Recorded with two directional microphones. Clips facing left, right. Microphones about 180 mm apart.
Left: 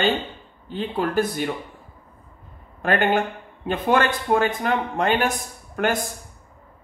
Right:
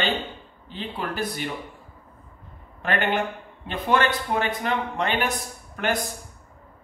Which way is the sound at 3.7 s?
50° left (ahead or behind).